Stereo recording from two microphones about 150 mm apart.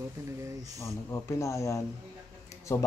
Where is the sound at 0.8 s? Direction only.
20° left (ahead or behind).